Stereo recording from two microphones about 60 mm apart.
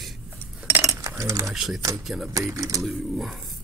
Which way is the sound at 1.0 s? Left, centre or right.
Right.